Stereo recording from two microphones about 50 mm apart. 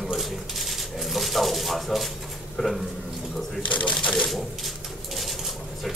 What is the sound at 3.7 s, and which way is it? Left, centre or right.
Speech, left.